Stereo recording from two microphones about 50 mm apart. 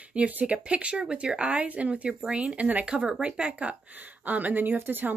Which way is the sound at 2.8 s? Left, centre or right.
Centre.